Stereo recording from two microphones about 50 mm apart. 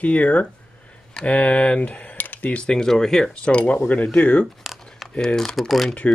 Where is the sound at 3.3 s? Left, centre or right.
Left.